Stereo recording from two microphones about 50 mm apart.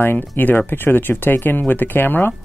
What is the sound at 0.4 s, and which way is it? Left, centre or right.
Speech, left.